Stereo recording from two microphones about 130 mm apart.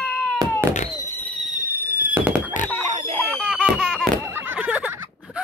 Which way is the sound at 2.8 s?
65° right (ahead or behind).